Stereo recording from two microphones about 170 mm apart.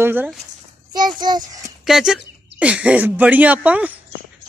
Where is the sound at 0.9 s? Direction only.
25° right (ahead or behind).